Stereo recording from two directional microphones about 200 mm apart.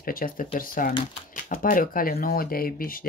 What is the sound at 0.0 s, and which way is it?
Speech, 45° left (ahead or behind).